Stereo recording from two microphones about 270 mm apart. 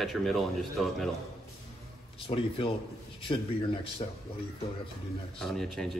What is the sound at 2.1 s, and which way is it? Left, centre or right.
Speech, centre.